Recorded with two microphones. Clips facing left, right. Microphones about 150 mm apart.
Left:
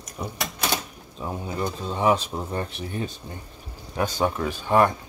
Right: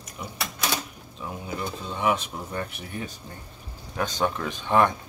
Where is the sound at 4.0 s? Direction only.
10° left (ahead or behind).